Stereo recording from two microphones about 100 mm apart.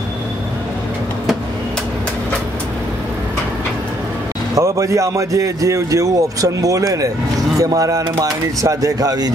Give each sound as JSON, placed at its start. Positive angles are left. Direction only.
{"t": 4.6, "sound": "a man's voice", "side_deg": -30}